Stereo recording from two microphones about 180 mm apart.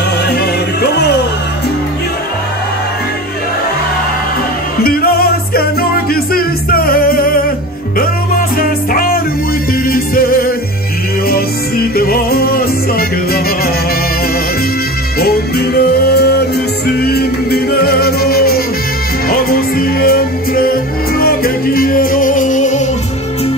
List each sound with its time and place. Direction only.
4.8 s music: 55° left (ahead or behind)
8.5 s music: 55° left (ahead or behind)
11.9 s music: 55° left (ahead or behind)
15.1 s music: 60° left (ahead or behind); by 22.8 s 40° left (ahead or behind)